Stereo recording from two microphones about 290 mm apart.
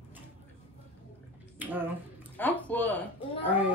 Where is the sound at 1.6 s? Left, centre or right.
Centre.